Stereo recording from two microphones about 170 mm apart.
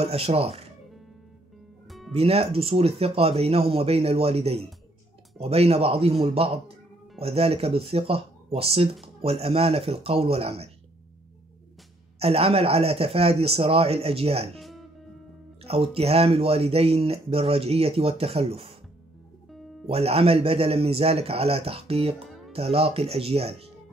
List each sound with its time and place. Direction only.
0.0 s speech: 35° right (ahead or behind)
1.9 s music: centre (ahead or behind)
2.1 s speech: 35° right (ahead or behind)
12.2 s speech: 35° right (ahead or behind)
14.6 s music: centre (ahead or behind)
15.6 s speech: 35° right (ahead or behind)
19.9 s speech: 35° right (ahead or behind)
22.2 s music: centre (ahead or behind)
22.5 s speech: 35° right (ahead or behind)